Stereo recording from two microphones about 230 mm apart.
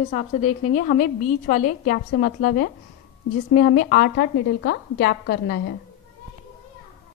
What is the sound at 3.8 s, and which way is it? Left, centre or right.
A woman's voice, left.